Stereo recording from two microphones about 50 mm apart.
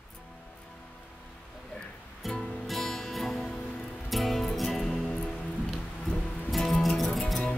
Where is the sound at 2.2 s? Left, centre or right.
Centre.